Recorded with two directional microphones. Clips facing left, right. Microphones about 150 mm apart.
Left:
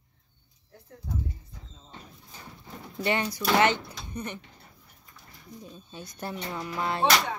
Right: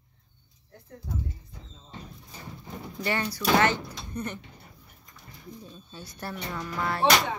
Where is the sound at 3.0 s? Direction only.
20° left (ahead or behind).